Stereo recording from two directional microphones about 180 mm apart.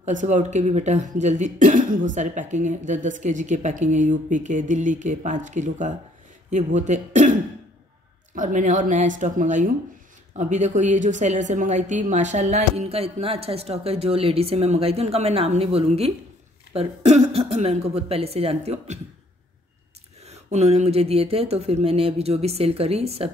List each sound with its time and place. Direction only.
0.0 s a woman's voice: 40° right (ahead or behind)
8.4 s a woman's voice: 45° right (ahead or behind)
20.2 s a woman's voice: 35° right (ahead or behind)